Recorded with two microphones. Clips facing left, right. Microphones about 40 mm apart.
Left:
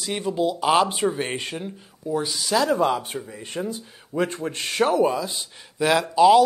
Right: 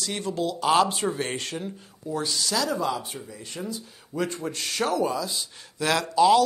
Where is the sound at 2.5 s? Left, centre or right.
Left.